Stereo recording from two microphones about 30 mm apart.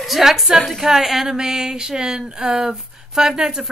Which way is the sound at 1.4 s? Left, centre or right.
Right.